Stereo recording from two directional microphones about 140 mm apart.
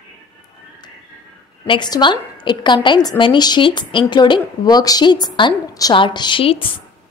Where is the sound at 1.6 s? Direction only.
35° left (ahead or behind).